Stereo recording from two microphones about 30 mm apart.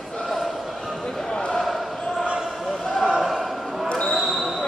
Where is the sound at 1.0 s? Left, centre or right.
Centre.